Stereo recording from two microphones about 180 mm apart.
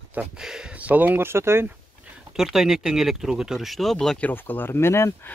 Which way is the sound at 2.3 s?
Centre (ahead or behind).